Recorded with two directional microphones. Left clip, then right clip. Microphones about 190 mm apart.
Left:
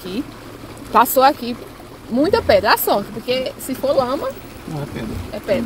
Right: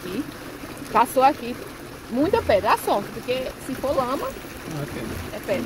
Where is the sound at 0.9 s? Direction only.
45° left (ahead or behind).